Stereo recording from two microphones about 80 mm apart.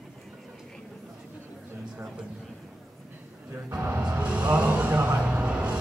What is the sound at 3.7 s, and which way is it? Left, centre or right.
Speech, right.